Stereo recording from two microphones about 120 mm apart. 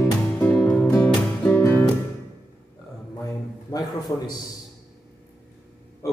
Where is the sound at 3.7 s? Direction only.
35° left (ahead or behind).